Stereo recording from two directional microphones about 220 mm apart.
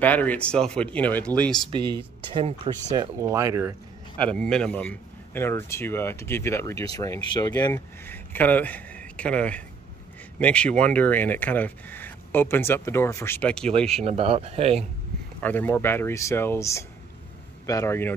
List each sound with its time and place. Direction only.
0.0 s speech: 5° left (ahead or behind)
1.7 s speech: 20° right (ahead or behind)
3.0 s speech: 15° right (ahead or behind)
4.2 s speech: 5° left (ahead or behind)
14.0 s speech: 25° right (ahead or behind)
15.4 s speech: 10° left (ahead or behind)